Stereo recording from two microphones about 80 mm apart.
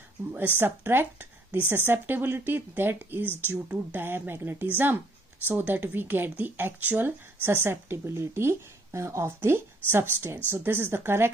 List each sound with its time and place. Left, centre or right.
0.6 s speech: right